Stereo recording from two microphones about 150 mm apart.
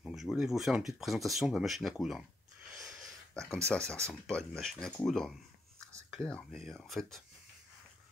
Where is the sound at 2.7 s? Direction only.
Centre (ahead or behind).